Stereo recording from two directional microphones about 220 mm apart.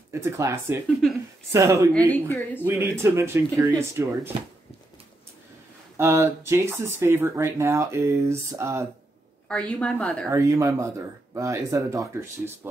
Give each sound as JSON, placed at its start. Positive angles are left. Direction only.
{"t": 0.1, "sound": "speech", "side_deg": -10}
{"t": 2.0, "sound": "a woman's voice", "side_deg": 5}
{"t": 2.6, "sound": "speech", "side_deg": -10}
{"t": 5.9, "sound": "speech", "side_deg": -10}
{"t": 9.5, "sound": "a woman's voice", "side_deg": 5}
{"t": 10.3, "sound": "speech", "side_deg": -15}